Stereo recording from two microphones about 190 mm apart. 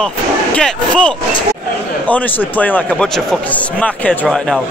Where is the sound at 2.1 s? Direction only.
10° left (ahead or behind).